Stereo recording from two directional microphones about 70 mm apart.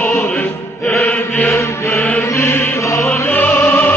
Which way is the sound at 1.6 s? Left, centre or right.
Left.